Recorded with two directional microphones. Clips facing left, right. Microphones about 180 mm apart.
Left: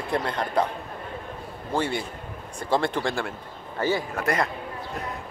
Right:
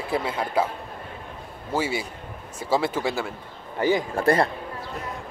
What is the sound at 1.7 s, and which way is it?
Speech, 5° right (ahead or behind).